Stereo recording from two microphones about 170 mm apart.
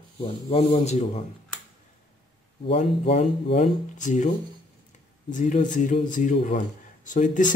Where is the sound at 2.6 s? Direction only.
35° left (ahead or behind).